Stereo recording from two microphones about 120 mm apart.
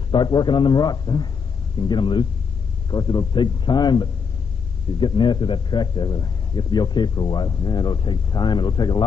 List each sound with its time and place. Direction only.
0.1 s a man's voice: 40° left (ahead or behind)